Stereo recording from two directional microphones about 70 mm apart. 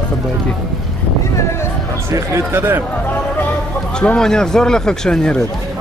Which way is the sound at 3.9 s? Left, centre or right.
Centre.